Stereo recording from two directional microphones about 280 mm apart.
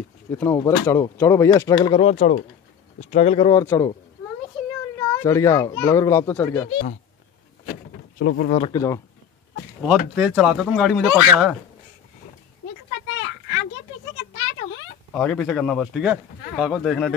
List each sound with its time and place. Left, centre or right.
0.3 s speech: centre
4.6 s a sound: centre
4.9 s speech: centre
6.7 s speech: left
8.2 s speech: left
8.5 s speech: left
9.8 s speech: centre
15.1 s speech: centre